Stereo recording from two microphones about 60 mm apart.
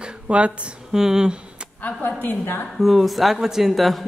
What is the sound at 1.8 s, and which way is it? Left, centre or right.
Speech, left.